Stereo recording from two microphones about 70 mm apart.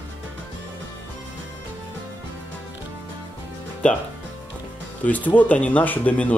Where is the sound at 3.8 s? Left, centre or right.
Centre.